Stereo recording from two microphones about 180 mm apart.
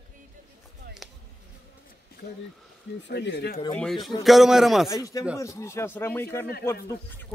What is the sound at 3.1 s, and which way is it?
Speech, 70° left (ahead or behind).